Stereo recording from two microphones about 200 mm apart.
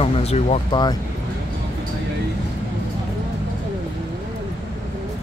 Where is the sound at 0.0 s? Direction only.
30° left (ahead or behind).